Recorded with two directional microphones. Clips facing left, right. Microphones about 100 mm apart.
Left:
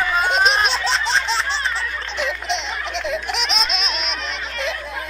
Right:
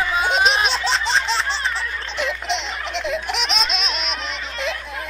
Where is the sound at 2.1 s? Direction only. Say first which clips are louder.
Even; centre (ahead or behind).